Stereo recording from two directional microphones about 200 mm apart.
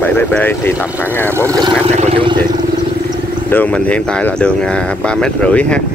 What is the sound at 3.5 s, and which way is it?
Speech, 5° left (ahead or behind).